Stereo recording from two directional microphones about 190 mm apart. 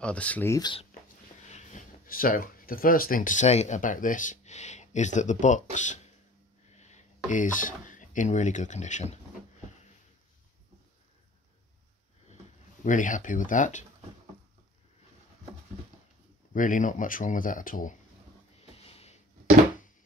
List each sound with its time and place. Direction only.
0.0 s speech: 5° left (ahead or behind); by 0.8 s 20° left (ahead or behind)
1.5 s speech: 40° left (ahead or behind)
12.8 s speech: 40° left (ahead or behind)
16.5 s speech: 45° left (ahead or behind)
18.6 s a sound: 35° left (ahead or behind)